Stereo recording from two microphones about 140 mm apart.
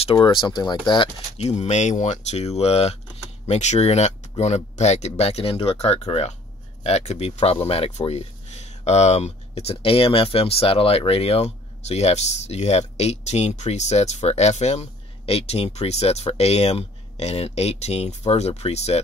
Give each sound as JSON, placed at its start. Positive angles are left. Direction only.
{"t": 0.0, "sound": "speech", "side_deg": 35}
{"t": 1.4, "sound": "speech", "side_deg": 50}